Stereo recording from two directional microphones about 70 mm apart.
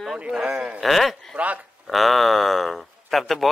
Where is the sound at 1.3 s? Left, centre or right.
Right.